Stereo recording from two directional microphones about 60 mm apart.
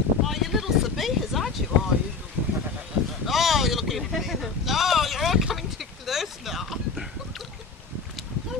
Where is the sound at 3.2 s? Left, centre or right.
Centre.